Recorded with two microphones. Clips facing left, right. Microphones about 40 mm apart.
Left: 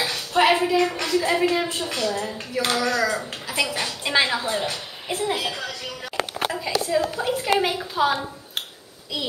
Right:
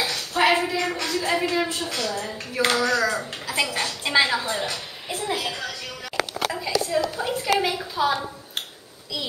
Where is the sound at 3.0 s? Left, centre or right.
Centre.